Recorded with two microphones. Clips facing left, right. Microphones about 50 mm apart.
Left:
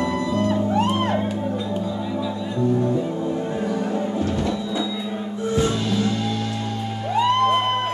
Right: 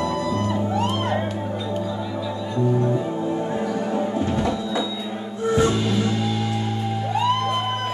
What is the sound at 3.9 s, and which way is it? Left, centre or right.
Music, centre.